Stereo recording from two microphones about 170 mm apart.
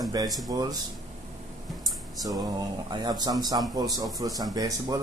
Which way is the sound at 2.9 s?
25° right (ahead or behind).